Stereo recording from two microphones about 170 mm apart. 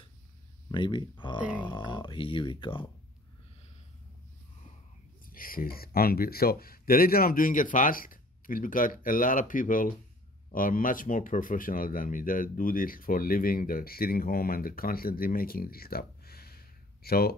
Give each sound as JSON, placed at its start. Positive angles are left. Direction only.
{"t": 0.7, "sound": "speech", "side_deg": 30}
{"t": 5.2, "sound": "speech", "side_deg": 55}